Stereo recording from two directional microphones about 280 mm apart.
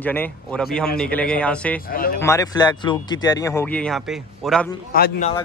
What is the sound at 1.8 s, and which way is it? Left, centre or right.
Speech, left.